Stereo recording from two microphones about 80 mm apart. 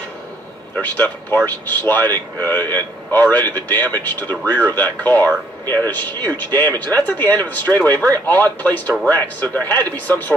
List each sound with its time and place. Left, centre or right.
0.7 s speech: left